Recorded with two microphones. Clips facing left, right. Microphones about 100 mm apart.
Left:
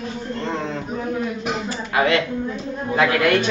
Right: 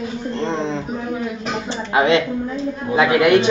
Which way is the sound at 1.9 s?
20° right (ahead or behind).